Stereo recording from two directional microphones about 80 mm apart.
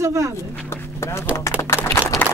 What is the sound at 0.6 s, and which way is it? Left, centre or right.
Clip-clop, left.